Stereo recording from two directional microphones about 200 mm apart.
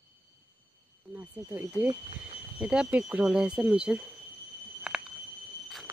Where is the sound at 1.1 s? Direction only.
10° right (ahead or behind).